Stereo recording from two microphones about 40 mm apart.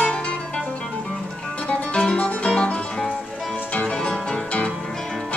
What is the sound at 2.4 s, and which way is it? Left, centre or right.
Music, left.